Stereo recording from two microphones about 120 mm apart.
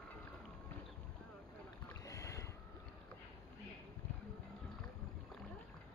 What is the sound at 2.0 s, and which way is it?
Boat, 25° left (ahead or behind).